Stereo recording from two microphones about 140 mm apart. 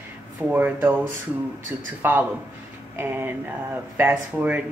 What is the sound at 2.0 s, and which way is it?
Speech, 15° right (ahead or behind).